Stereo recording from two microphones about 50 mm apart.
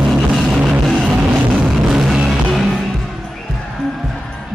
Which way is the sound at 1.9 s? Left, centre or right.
Centre.